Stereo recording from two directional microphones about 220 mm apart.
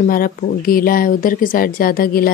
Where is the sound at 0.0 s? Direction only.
40° left (ahead or behind).